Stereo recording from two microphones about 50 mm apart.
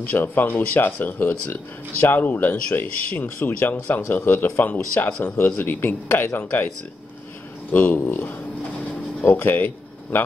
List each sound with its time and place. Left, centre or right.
0.0 s speech: left
7.7 s speech: left
9.2 s speech: left